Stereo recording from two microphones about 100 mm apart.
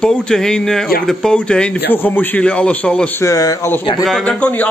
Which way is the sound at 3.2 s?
35° left (ahead or behind).